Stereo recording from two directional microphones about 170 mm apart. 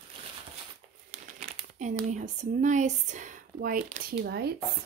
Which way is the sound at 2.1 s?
45° right (ahead or behind).